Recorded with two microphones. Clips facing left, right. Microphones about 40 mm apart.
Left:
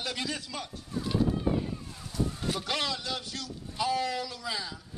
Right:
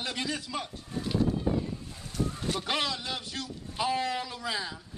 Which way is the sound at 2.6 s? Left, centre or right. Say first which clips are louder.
Right 1 dB; centre.